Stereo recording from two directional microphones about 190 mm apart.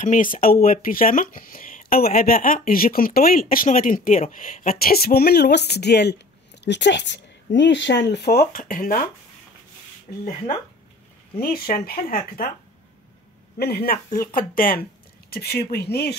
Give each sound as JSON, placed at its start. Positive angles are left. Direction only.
{"t": 0.0, "sound": "speech", "side_deg": 45}
{"t": 11.3, "sound": "speech", "side_deg": 50}
{"t": 13.6, "sound": "speech", "side_deg": 55}